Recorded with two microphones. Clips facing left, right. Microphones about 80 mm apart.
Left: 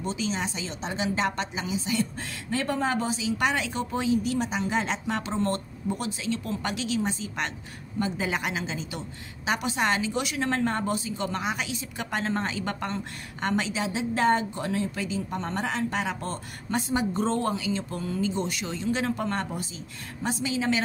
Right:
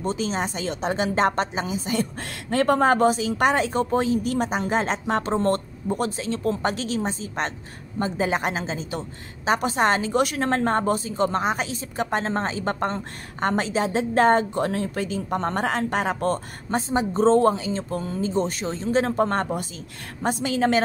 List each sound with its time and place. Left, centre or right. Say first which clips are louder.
0.0 s a woman's voice: right 4 dB; right
0.7 s a woman's voice: right 7 dB; right
16.9 s a woman's voice: right 9 dB; right